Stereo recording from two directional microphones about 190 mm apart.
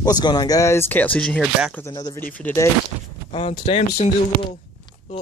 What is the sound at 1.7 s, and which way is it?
Speech, 15° left (ahead or behind).